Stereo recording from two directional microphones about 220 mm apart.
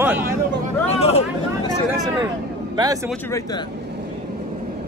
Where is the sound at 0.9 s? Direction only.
30° left (ahead or behind).